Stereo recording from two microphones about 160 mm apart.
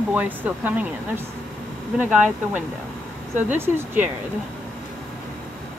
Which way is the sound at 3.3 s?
15° right (ahead or behind).